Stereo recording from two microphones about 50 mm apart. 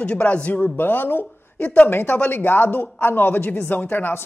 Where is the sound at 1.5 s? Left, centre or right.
Left.